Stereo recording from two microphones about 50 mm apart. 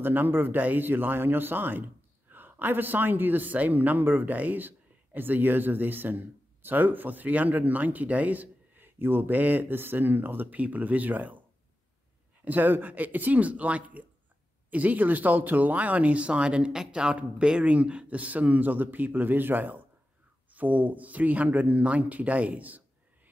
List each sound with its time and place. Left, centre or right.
0.0 s speech: right
12.4 s speech: right; by 17.1 s centre
17.1 s speech: right